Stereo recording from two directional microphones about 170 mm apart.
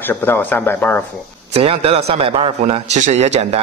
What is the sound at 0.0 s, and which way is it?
A man's voice, 10° left (ahead or behind).